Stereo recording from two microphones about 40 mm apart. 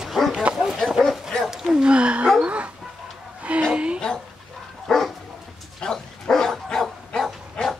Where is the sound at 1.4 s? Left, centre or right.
Centre.